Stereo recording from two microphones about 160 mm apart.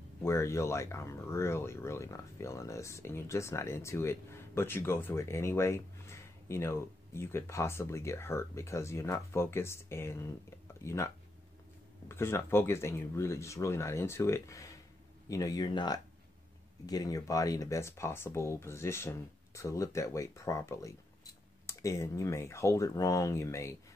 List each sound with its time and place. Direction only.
0.2 s speech: 15° left (ahead or behind)